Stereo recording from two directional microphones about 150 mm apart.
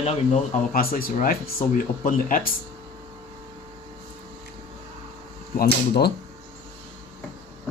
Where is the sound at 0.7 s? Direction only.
70° left (ahead or behind).